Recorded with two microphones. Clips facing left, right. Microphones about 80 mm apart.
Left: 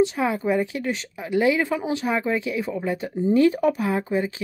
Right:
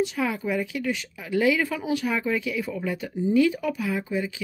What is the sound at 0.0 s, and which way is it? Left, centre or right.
Speech, left.